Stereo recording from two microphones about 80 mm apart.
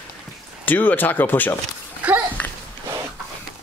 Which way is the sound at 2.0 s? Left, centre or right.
Centre.